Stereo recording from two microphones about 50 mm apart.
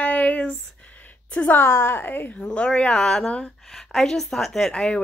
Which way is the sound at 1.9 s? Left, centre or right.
Left.